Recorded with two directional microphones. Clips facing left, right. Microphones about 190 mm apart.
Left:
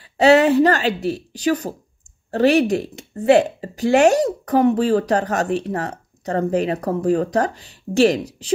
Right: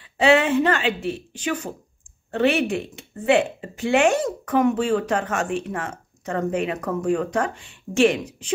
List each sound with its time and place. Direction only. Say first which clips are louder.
0.0 s speech: left 5 dB; 40° left (ahead or behind)